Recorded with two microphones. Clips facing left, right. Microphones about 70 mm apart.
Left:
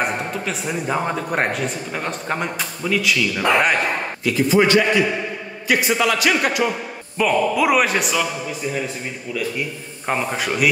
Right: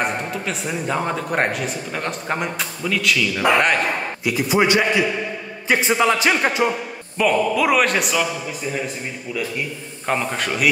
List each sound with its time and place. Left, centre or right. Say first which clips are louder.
0.0 s a man's voice: even; centre
4.2 s speech: left 3 dB; centre
7.2 s a man's voice: even; centre
10.0 s a man's voice: even; centre